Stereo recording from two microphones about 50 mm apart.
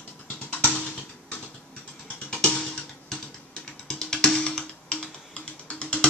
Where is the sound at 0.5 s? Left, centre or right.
Left.